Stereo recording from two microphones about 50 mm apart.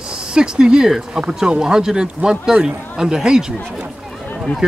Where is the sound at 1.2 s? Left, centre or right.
Right.